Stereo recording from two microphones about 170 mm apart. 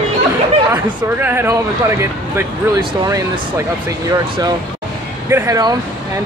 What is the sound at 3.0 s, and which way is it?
Speech, 20° right (ahead or behind).